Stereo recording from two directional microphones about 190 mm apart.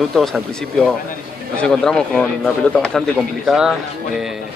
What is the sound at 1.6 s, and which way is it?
A man's voice, 5° left (ahead or behind).